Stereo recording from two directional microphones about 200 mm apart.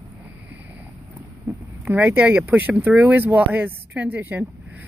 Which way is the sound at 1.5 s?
10° right (ahead or behind).